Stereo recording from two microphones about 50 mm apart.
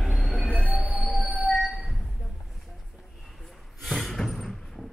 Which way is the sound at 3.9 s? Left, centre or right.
Centre.